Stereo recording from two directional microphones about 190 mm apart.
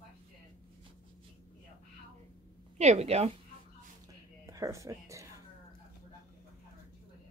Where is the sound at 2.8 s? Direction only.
35° right (ahead or behind).